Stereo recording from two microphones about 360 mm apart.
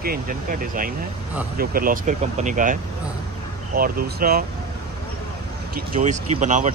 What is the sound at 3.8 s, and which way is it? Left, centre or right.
Speech, right.